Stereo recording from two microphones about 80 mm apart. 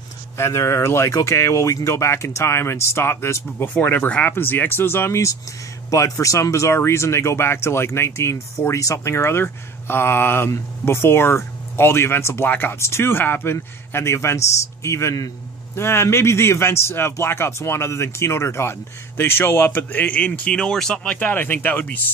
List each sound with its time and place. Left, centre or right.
0.4 s speech: left